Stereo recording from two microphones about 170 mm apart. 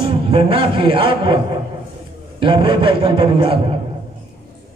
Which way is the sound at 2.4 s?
30° right (ahead or behind).